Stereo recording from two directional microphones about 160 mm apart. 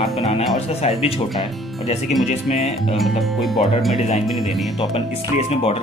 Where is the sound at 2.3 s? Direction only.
45° left (ahead or behind).